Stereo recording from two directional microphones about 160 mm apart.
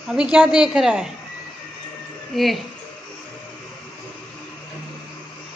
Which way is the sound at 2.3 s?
Centre (ahead or behind).